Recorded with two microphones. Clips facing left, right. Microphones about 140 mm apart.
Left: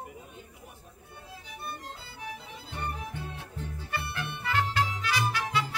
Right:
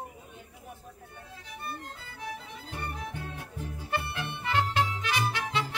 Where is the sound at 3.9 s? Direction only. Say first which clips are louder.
Right 3 dB; 20° right (ahead or behind).